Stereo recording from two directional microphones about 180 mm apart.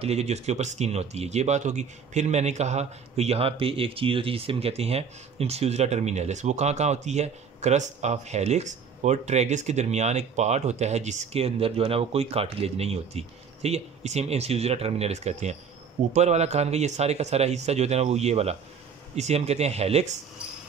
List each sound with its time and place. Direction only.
0.0 s speech: 35° right (ahead or behind)